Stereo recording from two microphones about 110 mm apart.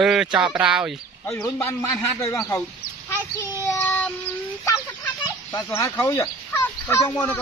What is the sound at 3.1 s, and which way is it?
Child singing, 25° left (ahead or behind).